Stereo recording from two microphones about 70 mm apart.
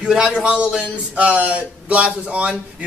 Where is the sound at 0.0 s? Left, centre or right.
Centre.